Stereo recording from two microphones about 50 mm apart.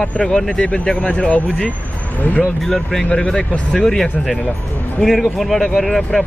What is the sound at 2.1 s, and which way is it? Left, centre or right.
Speech, left.